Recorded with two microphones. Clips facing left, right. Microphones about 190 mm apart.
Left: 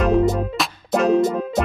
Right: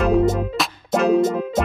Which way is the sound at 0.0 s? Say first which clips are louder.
Even; 10° right (ahead or behind).